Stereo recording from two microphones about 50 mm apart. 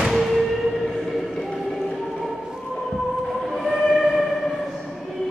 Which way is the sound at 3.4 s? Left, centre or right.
Centre.